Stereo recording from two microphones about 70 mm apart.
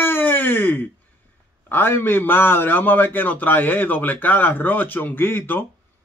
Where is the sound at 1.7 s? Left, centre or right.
Left.